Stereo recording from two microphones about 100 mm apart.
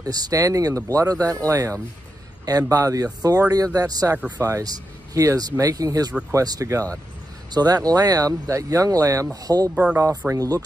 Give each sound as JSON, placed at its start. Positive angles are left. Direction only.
{"t": 0.0, "sound": "speech", "side_deg": -40}